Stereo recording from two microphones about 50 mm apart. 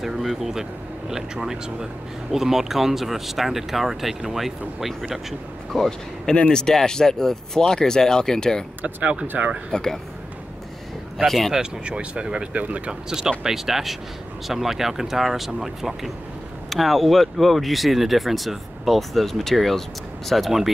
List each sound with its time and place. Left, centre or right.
0.0 s speech: centre
5.7 s speech: centre
8.8 s speech: right
9.7 s speech: centre
11.2 s speech: centre
11.5 s speech: right
13.4 s speech: centre